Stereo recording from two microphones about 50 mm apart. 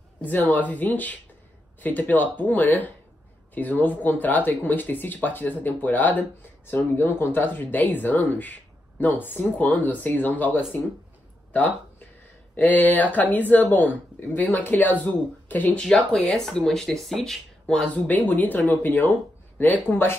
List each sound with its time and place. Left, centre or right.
0.5 s speech: left
12.5 s speech: left
15.7 s speech: centre
16.2 s speech: centre
17.9 s speech: left